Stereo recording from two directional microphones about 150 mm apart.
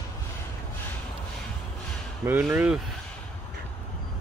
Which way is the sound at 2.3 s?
10° right (ahead or behind).